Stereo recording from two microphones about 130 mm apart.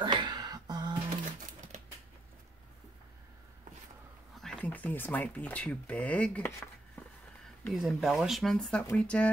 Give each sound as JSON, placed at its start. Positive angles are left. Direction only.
{"t": 0.0, "sound": "a sound", "side_deg": -35}
{"t": 4.4, "sound": "speech", "side_deg": 5}
{"t": 7.6, "sound": "speech", "side_deg": -5}